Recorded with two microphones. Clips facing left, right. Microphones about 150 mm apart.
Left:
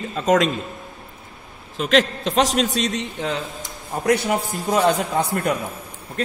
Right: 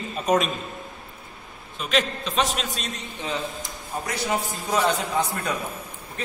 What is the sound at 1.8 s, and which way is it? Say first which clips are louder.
A man's voice: left 6 dB; 90° left.